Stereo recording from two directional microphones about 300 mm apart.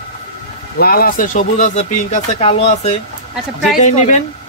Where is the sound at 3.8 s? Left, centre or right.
Left.